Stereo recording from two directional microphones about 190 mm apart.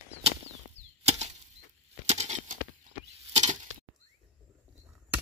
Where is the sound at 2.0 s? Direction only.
35° right (ahead or behind).